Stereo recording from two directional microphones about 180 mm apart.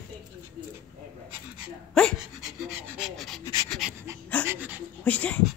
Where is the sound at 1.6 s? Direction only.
Centre (ahead or behind).